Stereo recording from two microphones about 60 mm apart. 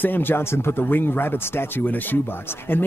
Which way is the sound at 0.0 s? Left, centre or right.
Left.